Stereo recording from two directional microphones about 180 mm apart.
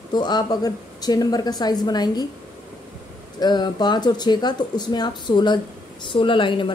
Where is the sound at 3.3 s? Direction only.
25° left (ahead or behind).